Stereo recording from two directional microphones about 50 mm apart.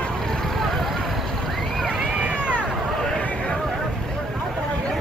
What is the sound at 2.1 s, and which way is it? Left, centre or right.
Cat, right.